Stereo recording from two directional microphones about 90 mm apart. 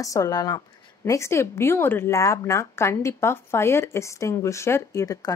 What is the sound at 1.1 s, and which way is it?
A woman's voice, 30° left (ahead or behind).